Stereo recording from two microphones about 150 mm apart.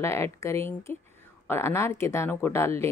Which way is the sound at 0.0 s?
20° left (ahead or behind).